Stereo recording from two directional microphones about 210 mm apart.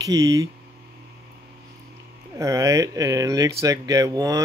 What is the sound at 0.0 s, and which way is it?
Speech, 15° right (ahead or behind).